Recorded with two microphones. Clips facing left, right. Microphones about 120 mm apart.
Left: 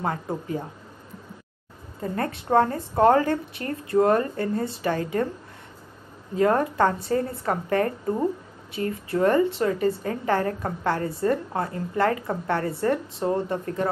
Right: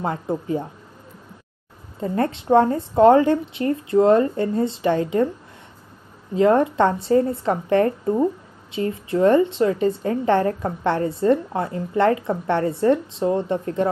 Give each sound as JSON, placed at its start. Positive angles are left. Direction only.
{"t": 0.0, "sound": "a woman's voice", "side_deg": -25}
{"t": 2.0, "sound": "a woman's voice", "side_deg": -30}
{"t": 6.3, "sound": "a woman's voice", "side_deg": -25}